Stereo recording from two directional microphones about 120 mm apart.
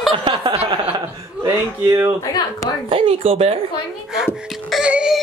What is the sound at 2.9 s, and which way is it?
Speech, 50° right (ahead or behind).